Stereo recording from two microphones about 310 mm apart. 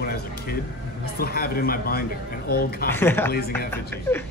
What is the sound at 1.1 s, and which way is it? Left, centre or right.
Speech, left.